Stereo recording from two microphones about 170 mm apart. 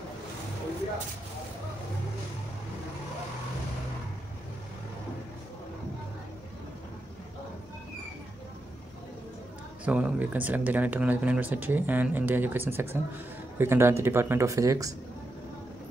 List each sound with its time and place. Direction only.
9.8 s speech: 5° right (ahead or behind)